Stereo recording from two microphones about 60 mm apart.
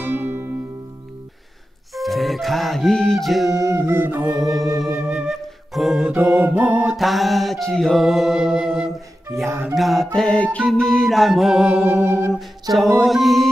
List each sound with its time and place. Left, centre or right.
0.0 s music: right
2.0 s music: centre
3.5 s music: right
4.4 s music: centre
5.0 s flute: centre
5.3 s music: centre
6.1 s music: right
7.0 s music: centre
9.5 s music: right
9.8 s music: centre
10.4 s music: centre
10.7 s music: centre
11.8 s music: right
13.0 s music: centre